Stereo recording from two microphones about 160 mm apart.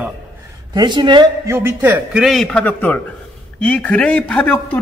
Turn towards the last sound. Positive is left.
turn(degrees=10)  # may be behind; listen again after turning